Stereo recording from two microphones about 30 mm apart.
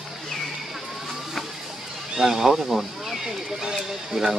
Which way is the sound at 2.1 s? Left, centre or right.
Centre.